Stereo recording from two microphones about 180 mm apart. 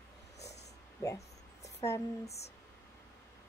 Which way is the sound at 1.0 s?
15° left (ahead or behind).